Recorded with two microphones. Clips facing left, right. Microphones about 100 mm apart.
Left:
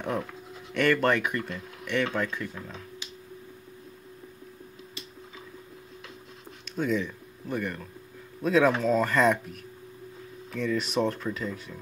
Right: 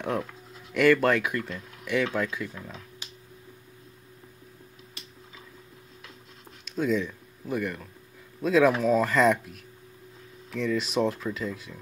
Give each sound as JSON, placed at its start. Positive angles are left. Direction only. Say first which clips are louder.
{"t": 0.7, "sound": "speech", "louder": "right 3 dB", "side_deg": 0}
{"t": 6.6, "sound": "speech", "louder": "right 2 dB", "side_deg": 0}